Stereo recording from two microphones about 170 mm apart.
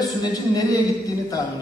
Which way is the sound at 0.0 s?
25° left (ahead or behind).